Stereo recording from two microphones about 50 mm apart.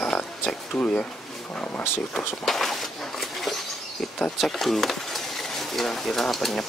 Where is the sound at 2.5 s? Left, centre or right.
Centre.